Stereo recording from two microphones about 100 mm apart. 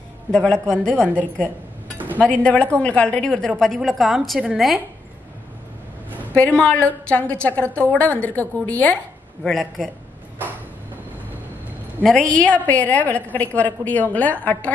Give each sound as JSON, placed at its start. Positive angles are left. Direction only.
{"t": 0.3, "sound": "a woman's voice", "side_deg": 10}
{"t": 2.0, "sound": "a sound", "side_deg": -15}
{"t": 2.2, "sound": "a woman's voice", "side_deg": 10}
{"t": 6.3, "sound": "a woman's voice", "side_deg": 15}
{"t": 9.4, "sound": "a man's voice", "side_deg": 0}
{"t": 12.0, "sound": "a woman's voice", "side_deg": 10}